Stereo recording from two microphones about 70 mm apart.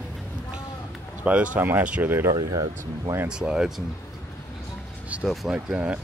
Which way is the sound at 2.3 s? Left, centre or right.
Right.